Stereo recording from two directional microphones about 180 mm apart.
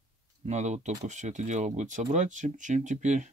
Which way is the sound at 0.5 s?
40° right (ahead or behind).